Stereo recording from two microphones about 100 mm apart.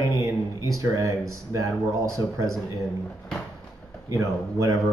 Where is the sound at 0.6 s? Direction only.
35° right (ahead or behind).